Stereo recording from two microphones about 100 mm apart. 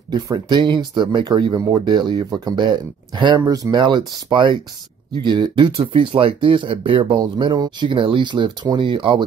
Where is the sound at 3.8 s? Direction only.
50° right (ahead or behind).